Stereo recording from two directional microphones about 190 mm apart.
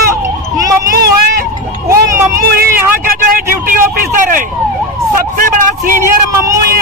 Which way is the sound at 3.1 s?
50° right (ahead or behind).